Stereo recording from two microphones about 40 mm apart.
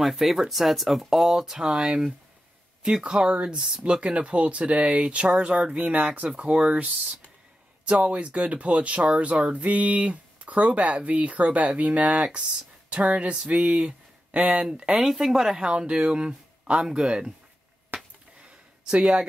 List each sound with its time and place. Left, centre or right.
0.0 s speech: centre; by 6.2 s right
6.2 s speech: right
15.0 s speech: centre
15.6 s speech: right
17.9 s a sound: right
18.4 s a sound: right